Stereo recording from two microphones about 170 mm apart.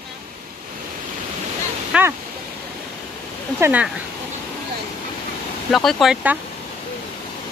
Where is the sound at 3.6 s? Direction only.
10° right (ahead or behind).